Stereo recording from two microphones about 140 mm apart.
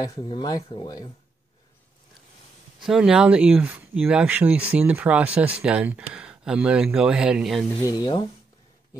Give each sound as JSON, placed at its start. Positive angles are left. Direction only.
{"t": 0.0, "sound": "speech", "side_deg": 30}
{"t": 2.8, "sound": "speech", "side_deg": -5}
{"t": 7.8, "sound": "speech", "side_deg": 30}